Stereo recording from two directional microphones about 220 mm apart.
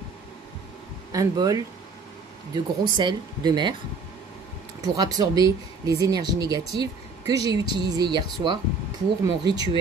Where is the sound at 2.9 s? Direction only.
20° right (ahead or behind).